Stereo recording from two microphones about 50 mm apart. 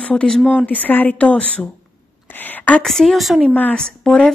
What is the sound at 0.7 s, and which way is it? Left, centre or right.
Speech, left.